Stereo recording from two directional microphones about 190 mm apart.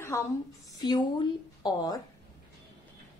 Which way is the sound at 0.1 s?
15° left (ahead or behind).